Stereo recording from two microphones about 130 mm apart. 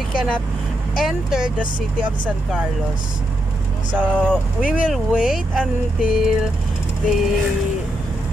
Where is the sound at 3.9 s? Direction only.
5° left (ahead or behind).